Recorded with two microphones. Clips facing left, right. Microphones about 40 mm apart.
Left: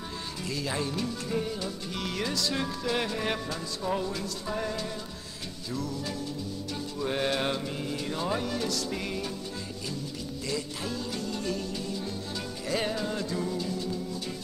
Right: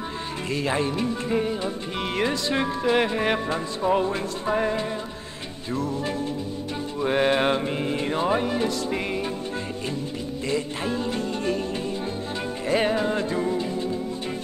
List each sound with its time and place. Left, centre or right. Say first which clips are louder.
0.5 s music: right 7 dB; right
7.0 s music: right 8 dB; right
10.5 s music: right 7 dB; right